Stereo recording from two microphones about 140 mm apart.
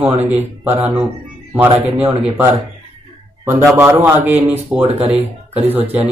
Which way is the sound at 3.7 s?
15° right (ahead or behind).